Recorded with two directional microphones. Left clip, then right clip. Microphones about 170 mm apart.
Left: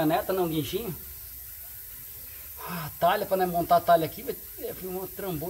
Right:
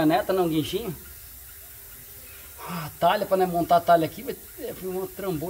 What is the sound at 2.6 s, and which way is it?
A man's voice, 5° left (ahead or behind).